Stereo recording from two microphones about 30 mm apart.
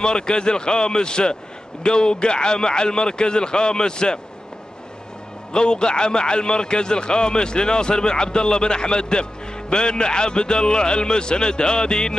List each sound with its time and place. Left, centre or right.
0.0 s a man's voice: left
5.5 s a man's voice: left